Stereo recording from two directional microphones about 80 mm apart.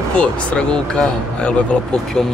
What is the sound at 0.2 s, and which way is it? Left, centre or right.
Speech, centre.